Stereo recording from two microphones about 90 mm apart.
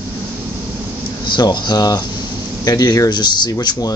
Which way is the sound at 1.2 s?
55° left (ahead or behind).